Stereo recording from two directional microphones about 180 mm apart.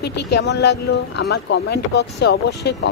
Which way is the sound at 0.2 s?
70° left (ahead or behind).